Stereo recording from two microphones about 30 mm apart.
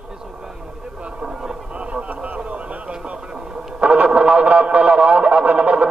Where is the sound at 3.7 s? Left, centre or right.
Right.